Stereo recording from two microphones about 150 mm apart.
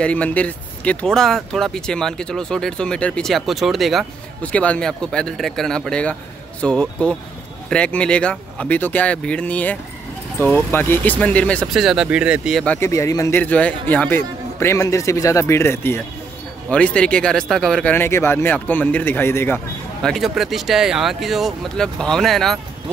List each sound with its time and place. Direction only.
0.0 s a man's voice: 10° left (ahead or behind)
11.6 s speech: centre (ahead or behind)
12.6 s a man's voice: 15° left (ahead or behind)
20.0 s speech: centre (ahead or behind)